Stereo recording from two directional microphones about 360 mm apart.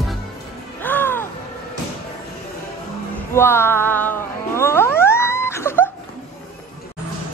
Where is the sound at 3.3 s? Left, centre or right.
Centre.